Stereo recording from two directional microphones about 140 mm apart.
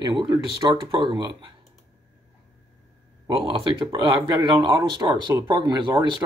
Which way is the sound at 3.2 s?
35° right (ahead or behind).